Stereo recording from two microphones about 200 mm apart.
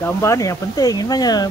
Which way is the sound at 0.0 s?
15° left (ahead or behind).